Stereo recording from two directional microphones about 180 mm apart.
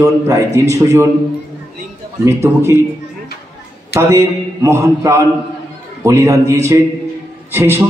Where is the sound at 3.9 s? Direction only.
15° right (ahead or behind).